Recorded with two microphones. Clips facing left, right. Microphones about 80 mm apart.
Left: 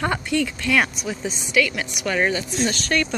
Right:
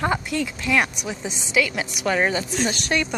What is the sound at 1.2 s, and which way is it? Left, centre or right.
A woman's voice, right.